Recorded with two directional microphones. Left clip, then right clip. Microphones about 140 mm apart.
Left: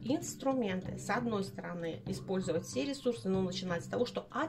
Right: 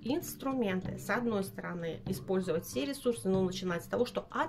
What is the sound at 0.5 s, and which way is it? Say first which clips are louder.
Speech: left 1 dB; 45° right (ahead or behind).